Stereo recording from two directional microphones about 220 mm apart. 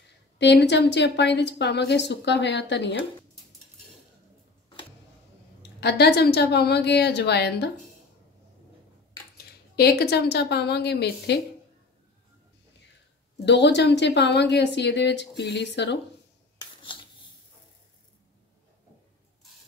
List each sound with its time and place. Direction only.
0.4 s a woman's voice: 50° left (ahead or behind)
5.6 s a woman's voice: 50° left (ahead or behind)
9.8 s a woman's voice: 45° left (ahead or behind)
13.5 s a woman's voice: 50° left (ahead or behind)